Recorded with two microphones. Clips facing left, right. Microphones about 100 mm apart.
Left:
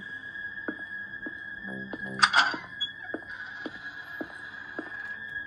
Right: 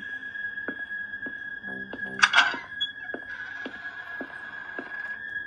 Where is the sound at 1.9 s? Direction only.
10° left (ahead or behind).